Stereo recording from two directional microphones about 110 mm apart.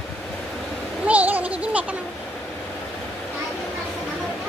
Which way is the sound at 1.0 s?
15° right (ahead or behind).